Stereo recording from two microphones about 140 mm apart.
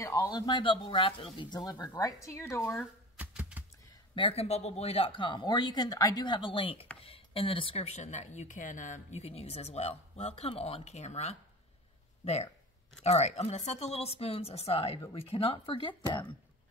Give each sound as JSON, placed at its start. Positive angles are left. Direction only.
{"t": 0.0, "sound": "a man's voice", "side_deg": 20}
{"t": 0.3, "sound": "speech", "side_deg": 30}
{"t": 1.9, "sound": "speech", "side_deg": 20}
{"t": 3.2, "sound": "a sound", "side_deg": -10}
{"t": 4.1, "sound": "speech", "side_deg": 40}
{"t": 13.0, "sound": "speech", "side_deg": 50}